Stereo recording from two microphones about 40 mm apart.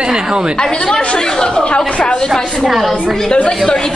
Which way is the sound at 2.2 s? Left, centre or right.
Centre.